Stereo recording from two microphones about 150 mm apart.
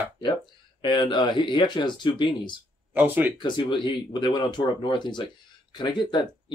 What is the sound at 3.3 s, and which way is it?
Speech, 30° left (ahead or behind).